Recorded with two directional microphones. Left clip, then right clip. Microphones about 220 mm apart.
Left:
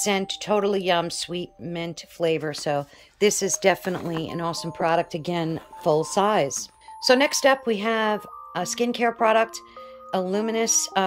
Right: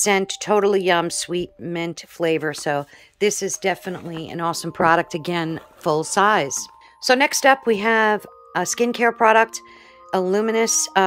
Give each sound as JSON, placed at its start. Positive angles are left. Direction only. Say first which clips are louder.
{"t": 0.0, "sound": "speech", "louder": "right 5 dB", "side_deg": -20}
{"t": 3.3, "sound": "speech", "louder": "left 1 dB", "side_deg": 0}